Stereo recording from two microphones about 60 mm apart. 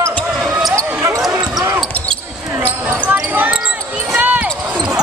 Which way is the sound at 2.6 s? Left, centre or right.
Right.